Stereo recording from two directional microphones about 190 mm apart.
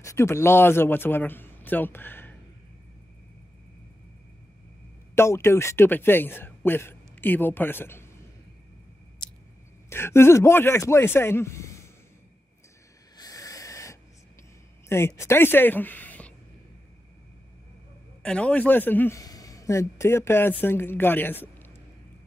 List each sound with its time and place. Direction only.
0.0 s speech: 15° left (ahead or behind)
5.1 s a man's voice: 15° left (ahead or behind)
9.8 s speech: 15° left (ahead or behind)
13.2 s hiss: 20° left (ahead or behind)
14.9 s a woman's voice: 15° left (ahead or behind)
18.2 s a man's voice: 5° left (ahead or behind)